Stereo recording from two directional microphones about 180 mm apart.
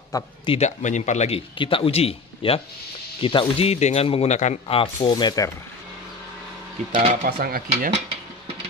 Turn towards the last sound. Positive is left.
turn(degrees=-45)  # may be behind; listen again after turning